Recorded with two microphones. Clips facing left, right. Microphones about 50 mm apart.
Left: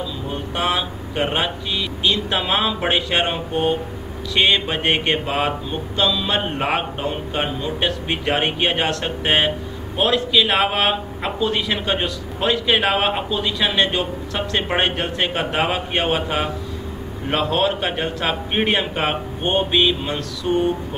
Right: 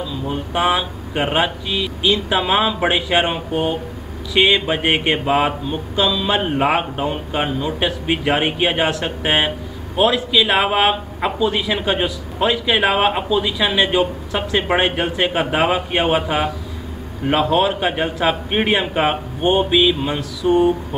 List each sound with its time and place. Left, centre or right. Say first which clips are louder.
0.6 s speech: right 4 dB; centre
5.2 s speech: right 4 dB; centre
5.9 s speech: right 2 dB; centre